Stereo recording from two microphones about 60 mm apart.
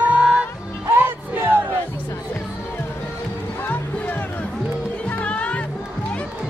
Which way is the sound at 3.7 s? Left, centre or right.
Left.